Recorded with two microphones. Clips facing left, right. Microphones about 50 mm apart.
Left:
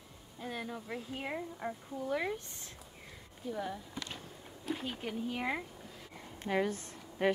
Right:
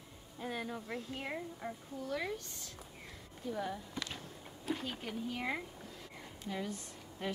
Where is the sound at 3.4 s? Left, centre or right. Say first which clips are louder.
Even; centre.